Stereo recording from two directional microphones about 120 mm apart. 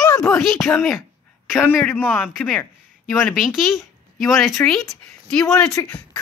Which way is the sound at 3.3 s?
Centre (ahead or behind).